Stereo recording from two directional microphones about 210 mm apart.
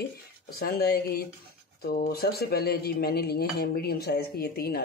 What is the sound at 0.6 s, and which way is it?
Speech, 50° left (ahead or behind).